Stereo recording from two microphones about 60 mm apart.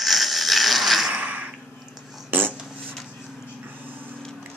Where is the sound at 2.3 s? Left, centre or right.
Right.